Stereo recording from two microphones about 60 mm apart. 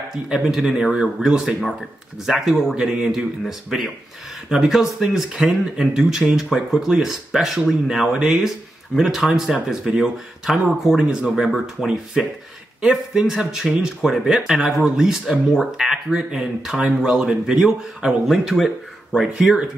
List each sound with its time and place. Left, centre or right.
0.3 s speech: centre